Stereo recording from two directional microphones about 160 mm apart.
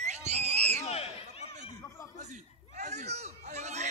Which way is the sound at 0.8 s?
40° left (ahead or behind).